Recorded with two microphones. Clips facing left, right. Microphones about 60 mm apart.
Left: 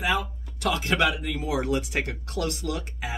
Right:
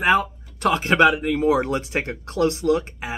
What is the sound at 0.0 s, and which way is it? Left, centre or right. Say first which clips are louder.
Speech: right 8 dB; right.